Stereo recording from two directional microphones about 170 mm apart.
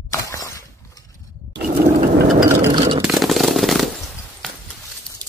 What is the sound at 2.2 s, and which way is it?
Vehicle, 60° right (ahead or behind).